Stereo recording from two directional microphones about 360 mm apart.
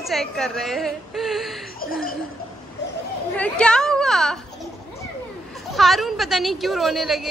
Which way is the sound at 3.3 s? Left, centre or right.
Centre.